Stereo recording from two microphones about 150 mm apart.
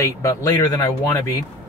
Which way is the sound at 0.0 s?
20° left (ahead or behind).